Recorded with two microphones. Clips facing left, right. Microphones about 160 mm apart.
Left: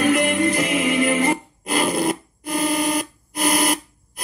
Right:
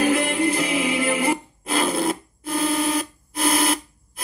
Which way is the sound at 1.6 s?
Centre (ahead or behind).